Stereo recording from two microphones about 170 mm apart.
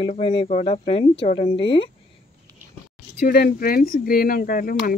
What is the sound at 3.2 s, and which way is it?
Speech, 55° left (ahead or behind).